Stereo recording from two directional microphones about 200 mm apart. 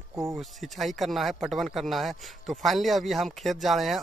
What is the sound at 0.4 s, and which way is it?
Speech, centre (ahead or behind).